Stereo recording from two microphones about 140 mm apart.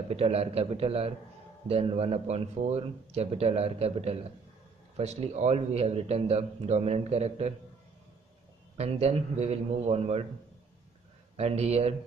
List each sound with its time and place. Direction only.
0.1 s a man's voice: 45° right (ahead or behind)
8.7 s a man's voice: 50° right (ahead or behind)
11.3 s a man's voice: 45° right (ahead or behind)